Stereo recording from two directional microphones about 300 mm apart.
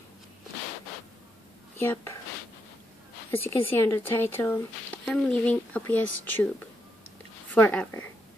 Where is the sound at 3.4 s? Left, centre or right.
Centre.